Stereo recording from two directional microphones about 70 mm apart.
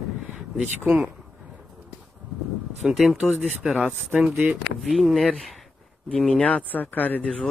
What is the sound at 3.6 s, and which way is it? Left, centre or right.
Speech, centre.